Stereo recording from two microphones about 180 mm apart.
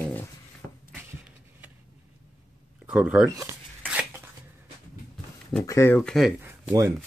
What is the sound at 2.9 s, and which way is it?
Speech, 5° right (ahead or behind).